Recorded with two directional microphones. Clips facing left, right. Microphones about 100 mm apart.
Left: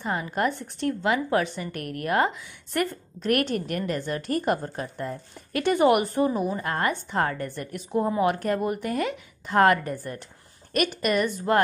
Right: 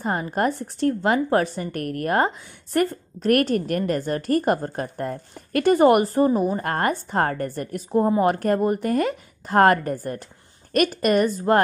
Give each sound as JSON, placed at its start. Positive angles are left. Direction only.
{"t": 0.0, "sound": "a woman's voice", "side_deg": -40}